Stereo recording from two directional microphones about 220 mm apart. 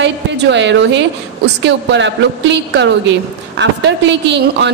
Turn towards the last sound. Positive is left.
turn(degrees=-50)  # may be behind; listen again after turning